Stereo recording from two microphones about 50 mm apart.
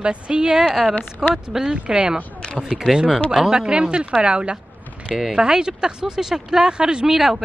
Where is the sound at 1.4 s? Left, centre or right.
Centre.